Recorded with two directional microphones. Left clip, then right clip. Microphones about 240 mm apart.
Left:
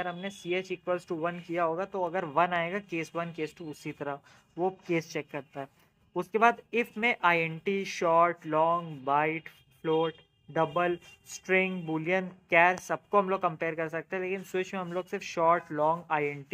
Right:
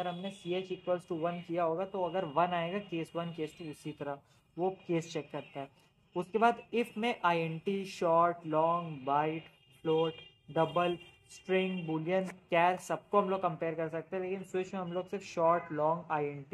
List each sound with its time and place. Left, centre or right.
0.0 s speech: left
6.1 s speech: centre